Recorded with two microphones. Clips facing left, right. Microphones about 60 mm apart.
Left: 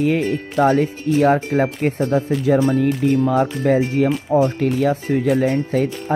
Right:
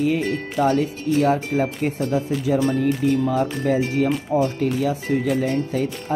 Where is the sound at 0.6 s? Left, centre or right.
Left.